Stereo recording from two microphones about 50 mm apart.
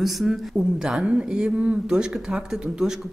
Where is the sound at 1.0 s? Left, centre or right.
Right.